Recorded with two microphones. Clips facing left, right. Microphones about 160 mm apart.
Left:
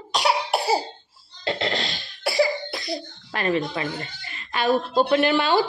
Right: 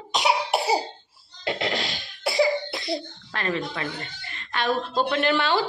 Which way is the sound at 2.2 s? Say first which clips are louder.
Even; 20° right (ahead or behind).